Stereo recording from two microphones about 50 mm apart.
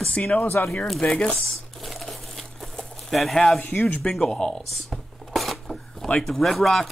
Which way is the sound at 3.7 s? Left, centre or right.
Left.